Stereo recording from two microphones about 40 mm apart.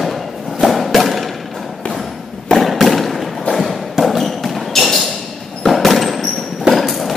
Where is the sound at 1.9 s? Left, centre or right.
Centre.